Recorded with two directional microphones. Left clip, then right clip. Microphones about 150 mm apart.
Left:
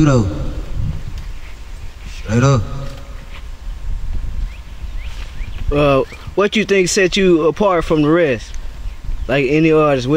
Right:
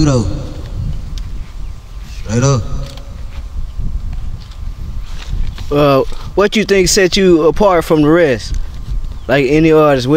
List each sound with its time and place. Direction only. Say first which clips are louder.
0.0 s speech: even; 25° right (ahead or behind)
2.2 s speech: right 1 dB; 25° right (ahead or behind)
5.7 s speech: right 3 dB; 20° right (ahead or behind)